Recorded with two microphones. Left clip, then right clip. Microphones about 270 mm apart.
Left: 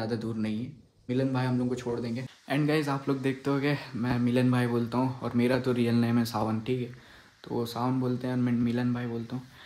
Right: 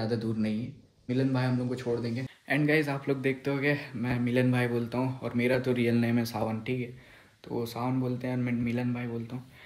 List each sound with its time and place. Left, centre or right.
0.0 s speech: centre